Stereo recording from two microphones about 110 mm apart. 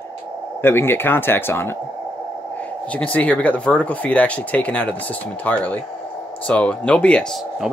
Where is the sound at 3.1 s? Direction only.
10° left (ahead or behind).